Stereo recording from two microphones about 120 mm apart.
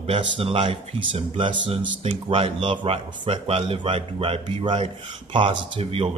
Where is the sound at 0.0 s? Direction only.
50° right (ahead or behind).